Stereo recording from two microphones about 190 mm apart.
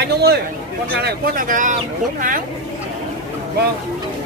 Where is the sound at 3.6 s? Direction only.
60° right (ahead or behind).